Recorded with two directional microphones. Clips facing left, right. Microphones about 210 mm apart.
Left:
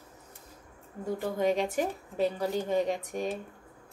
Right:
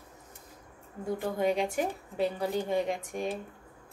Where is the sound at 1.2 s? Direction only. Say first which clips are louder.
Left 1 dB; 40° left (ahead or behind).